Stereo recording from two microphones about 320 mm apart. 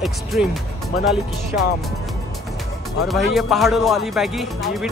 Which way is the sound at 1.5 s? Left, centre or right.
Left.